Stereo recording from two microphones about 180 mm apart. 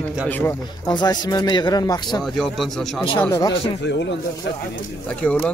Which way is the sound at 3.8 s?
75° left (ahead or behind).